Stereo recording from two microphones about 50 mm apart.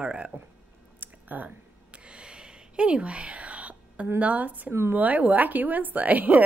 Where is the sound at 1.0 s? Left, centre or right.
Right.